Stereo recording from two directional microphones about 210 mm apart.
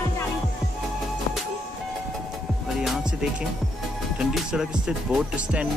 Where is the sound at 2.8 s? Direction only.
Centre (ahead or behind).